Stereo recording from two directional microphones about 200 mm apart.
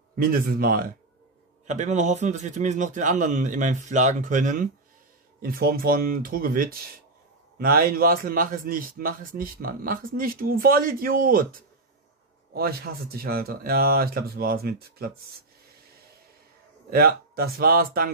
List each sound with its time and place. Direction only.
0.2 s a man's voice: 45° right (ahead or behind)
16.9 s a man's voice: 50° right (ahead or behind)